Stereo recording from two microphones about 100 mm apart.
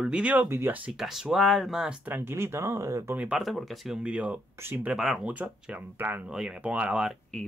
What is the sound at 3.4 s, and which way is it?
Speech, centre (ahead or behind).